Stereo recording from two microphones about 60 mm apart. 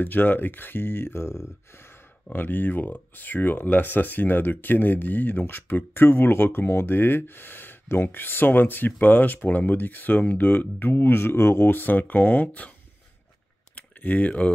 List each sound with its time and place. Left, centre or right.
0.0 s speech: left
2.3 s speech: left
13.7 s a sound: left